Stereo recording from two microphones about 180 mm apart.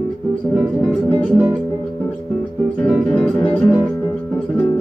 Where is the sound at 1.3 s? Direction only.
5° right (ahead or behind).